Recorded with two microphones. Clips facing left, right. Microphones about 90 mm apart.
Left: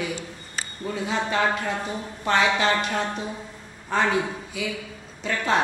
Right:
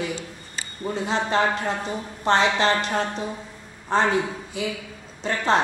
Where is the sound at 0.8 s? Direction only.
30° right (ahead or behind).